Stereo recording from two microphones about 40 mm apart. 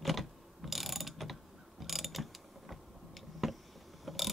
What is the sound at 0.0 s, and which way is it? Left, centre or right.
Mechanisms, centre.